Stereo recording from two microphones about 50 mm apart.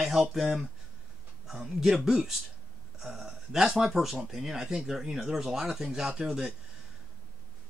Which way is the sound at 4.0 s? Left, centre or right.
Centre.